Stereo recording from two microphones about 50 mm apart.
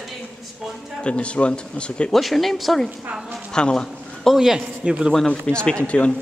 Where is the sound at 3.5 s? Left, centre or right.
Centre.